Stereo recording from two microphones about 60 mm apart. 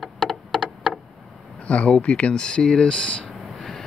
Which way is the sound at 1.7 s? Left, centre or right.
Left.